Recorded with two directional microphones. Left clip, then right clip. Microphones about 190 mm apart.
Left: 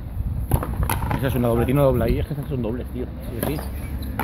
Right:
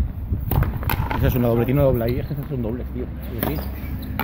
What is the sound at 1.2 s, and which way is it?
Speech, 10° right (ahead or behind).